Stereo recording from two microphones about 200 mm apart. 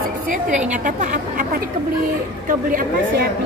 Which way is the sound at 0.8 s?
40° right (ahead or behind).